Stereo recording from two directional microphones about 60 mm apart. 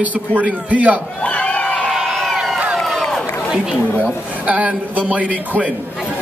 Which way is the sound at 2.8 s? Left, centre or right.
Centre.